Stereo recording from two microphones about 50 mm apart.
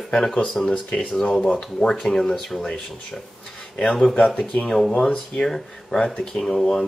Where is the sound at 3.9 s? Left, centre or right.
Centre.